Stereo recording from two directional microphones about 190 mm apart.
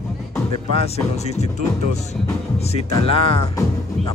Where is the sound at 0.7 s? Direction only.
35° left (ahead or behind).